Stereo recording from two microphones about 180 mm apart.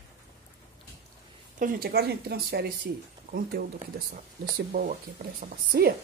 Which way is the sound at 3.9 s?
60° right (ahead or behind).